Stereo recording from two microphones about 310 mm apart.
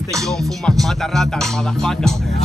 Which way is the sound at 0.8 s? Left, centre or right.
Centre.